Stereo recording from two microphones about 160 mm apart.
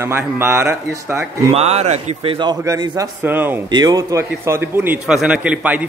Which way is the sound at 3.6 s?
25° right (ahead or behind).